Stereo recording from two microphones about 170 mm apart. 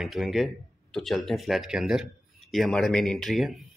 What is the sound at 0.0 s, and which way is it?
A man's voice, centre (ahead or behind).